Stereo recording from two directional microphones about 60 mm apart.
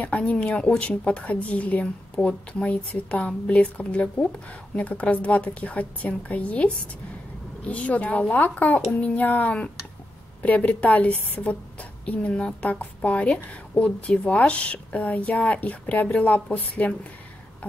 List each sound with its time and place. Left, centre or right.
0.0 s a woman's voice: left